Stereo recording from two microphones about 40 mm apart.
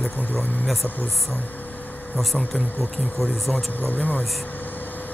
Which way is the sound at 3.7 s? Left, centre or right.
Left.